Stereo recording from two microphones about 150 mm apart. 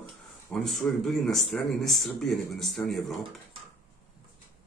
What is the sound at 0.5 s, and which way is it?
Speech, centre (ahead or behind).